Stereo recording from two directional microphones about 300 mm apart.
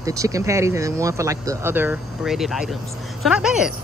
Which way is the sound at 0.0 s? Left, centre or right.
Centre.